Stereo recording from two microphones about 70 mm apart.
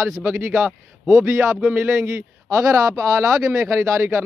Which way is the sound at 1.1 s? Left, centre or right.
Right.